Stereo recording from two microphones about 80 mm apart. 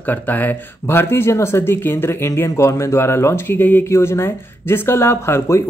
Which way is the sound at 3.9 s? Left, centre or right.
Left.